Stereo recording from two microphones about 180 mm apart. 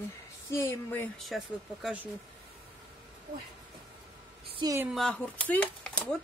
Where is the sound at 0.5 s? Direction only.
15° left (ahead or behind).